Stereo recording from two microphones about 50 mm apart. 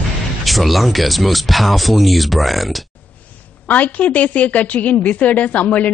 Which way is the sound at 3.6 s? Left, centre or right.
Left.